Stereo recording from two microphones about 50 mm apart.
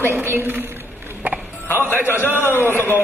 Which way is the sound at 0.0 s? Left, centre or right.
Right.